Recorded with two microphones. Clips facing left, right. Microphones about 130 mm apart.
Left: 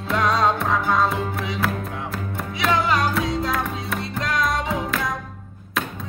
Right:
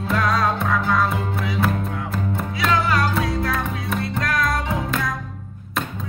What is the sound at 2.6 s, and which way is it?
Music, 20° left (ahead or behind).